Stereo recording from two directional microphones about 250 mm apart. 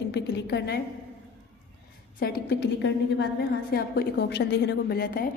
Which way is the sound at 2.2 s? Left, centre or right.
Left.